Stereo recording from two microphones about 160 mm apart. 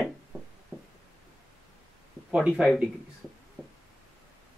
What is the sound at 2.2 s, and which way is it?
Speech, 5° right (ahead or behind).